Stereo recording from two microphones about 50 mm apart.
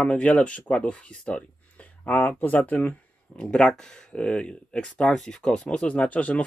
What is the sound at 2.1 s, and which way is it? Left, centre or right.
Speech, left.